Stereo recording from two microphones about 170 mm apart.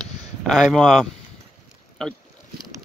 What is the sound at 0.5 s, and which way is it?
Speech, centre (ahead or behind).